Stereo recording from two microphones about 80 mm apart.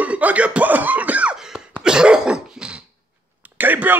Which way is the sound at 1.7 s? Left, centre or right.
Centre.